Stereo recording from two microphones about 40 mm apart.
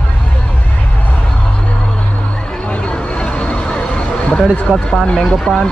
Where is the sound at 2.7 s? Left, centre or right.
Left.